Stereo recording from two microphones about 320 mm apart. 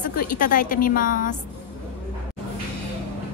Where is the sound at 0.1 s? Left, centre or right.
Left.